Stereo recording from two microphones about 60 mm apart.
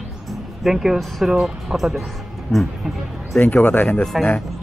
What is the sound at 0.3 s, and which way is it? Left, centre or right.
Speech, centre.